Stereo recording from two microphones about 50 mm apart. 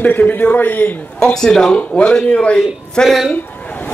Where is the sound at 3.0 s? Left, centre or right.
Centre.